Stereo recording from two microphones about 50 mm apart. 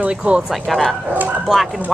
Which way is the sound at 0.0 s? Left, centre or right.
Right.